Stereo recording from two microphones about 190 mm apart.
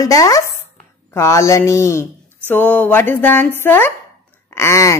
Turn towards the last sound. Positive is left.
turn(degrees=15)  # may be behind; listen again after turning